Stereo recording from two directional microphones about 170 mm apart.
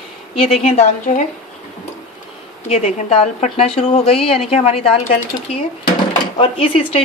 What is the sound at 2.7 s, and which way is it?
A woman's voice, 40° left (ahead or behind).